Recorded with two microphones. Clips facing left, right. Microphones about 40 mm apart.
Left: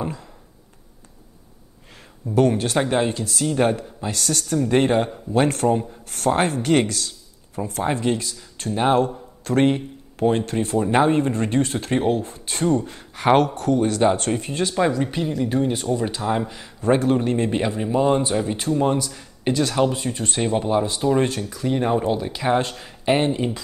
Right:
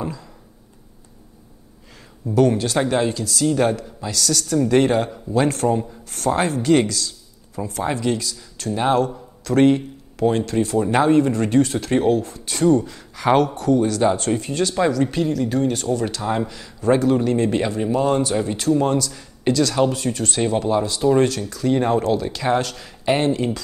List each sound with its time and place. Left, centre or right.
2.3 s speech: left
5.3 s speech: left
14.3 s speech: left
16.2 s speech: centre
16.4 s speech: left
17.5 s speech: centre
19.4 s speech: left
22.6 s speech: left
23.0 s speech: centre